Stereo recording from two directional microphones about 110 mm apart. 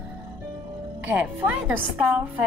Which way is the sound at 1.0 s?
15° right (ahead or behind).